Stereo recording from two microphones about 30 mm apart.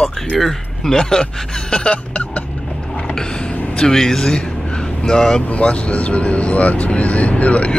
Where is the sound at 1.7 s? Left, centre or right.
Left.